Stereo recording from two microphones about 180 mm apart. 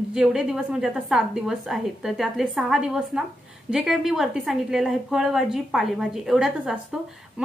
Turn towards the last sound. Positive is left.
turn(degrees=0)  # may be behind; listen again after turning